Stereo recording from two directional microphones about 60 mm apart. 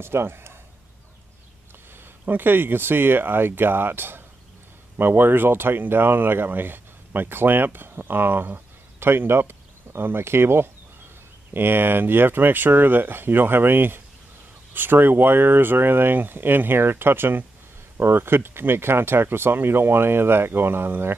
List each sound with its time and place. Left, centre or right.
0.0 s speech: right
2.0 s speech: right